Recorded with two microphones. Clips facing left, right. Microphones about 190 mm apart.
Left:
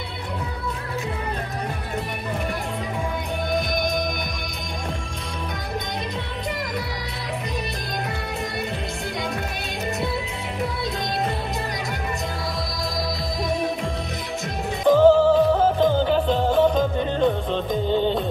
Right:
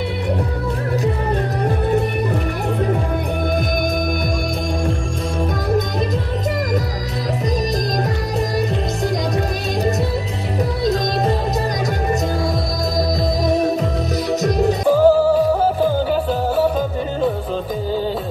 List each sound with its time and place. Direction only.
10.8 s music: 40° right (ahead or behind)
13.4 s music: 40° right (ahead or behind)
14.9 s music: 10° right (ahead or behind)